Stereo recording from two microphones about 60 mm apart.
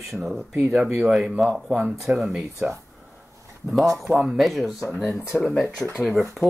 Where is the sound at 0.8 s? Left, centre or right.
Right.